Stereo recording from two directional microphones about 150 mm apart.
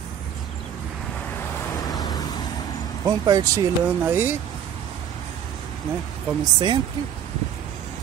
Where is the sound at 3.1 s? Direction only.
25° right (ahead or behind).